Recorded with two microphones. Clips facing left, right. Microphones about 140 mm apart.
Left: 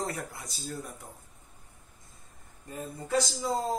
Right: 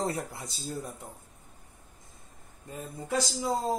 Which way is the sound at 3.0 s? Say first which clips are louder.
Even; 10° right (ahead or behind).